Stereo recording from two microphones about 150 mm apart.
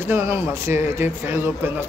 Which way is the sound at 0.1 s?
15° right (ahead or behind).